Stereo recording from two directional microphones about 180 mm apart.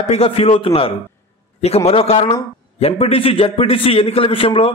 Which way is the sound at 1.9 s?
35° left (ahead or behind).